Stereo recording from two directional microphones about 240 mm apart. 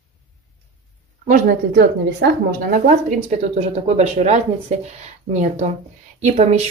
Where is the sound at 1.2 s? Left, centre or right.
Right.